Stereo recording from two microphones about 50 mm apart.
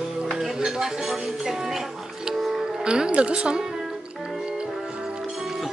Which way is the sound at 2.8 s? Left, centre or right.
Centre.